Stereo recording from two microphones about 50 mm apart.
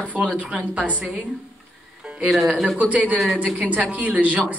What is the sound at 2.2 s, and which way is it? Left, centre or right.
Speech, centre.